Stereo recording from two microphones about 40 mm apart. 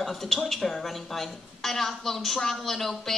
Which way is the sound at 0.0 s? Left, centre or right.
Centre.